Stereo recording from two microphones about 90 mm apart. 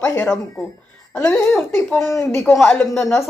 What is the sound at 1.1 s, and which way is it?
Speech, 15° left (ahead or behind).